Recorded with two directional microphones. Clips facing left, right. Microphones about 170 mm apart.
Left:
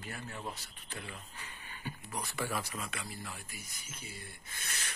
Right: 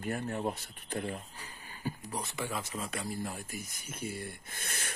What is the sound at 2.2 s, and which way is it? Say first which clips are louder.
Speech: left 3 dB; 20° right (ahead or behind).